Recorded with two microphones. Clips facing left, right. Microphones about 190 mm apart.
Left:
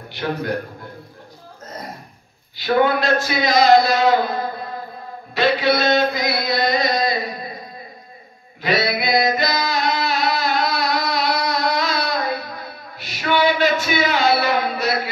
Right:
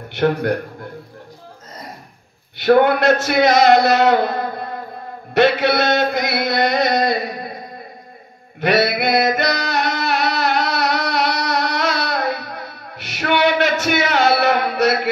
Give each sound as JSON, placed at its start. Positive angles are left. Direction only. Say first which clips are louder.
{"t": 0.2, "sound": "chant", "louder": "right 6 dB", "side_deg": -60}
{"t": 2.5, "sound": "a man's voice", "louder": "right 4 dB", "side_deg": -65}
{"t": 5.3, "sound": "chant", "louder": "right 3 dB", "side_deg": -65}
{"t": 8.5, "sound": "singing", "louder": "right 4 dB", "side_deg": -65}